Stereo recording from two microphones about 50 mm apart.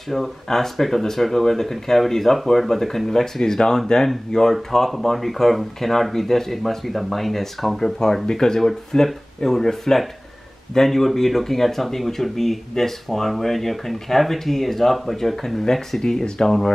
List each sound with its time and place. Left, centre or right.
0.1 s speech: centre